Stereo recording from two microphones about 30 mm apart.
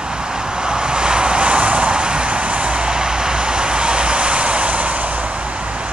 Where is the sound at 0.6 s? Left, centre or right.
Right.